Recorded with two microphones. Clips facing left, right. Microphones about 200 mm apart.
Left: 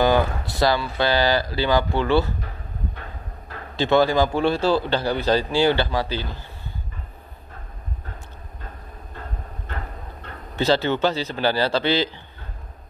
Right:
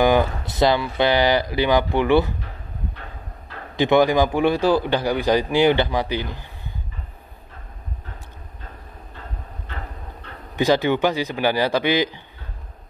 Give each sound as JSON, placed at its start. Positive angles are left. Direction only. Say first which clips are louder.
{"t": 0.0, "sound": "speech", "louder": "right 1 dB", "side_deg": -20}
{"t": 3.7, "sound": "a man's voice", "louder": "right 2 dB", "side_deg": -15}
{"t": 10.5, "sound": "a man's voice", "louder": "right 2 dB", "side_deg": -15}